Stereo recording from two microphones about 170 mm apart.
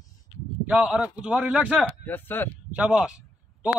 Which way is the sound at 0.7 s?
5° right (ahead or behind).